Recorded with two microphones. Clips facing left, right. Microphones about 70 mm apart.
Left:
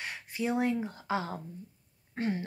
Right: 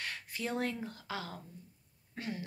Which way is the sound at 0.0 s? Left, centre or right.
Centre.